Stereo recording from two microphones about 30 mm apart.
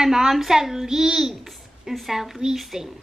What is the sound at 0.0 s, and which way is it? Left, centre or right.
A child's voice, centre.